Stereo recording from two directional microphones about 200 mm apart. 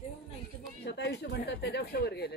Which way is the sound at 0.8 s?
55° left (ahead or behind).